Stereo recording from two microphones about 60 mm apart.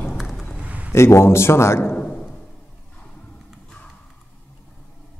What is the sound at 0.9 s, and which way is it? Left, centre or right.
A man's voice, left.